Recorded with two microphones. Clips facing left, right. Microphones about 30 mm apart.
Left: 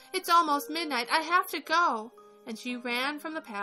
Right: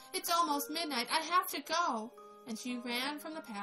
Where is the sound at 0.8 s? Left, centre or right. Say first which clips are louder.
Left 6 dB; left.